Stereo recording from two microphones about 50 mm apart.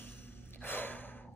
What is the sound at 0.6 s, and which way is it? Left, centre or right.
Gasp, left.